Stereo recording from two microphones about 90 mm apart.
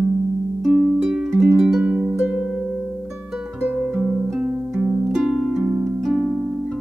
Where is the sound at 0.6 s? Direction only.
5° right (ahead or behind).